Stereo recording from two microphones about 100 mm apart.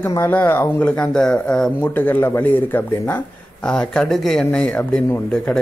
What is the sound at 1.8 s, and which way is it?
A man's voice, 20° left (ahead or behind).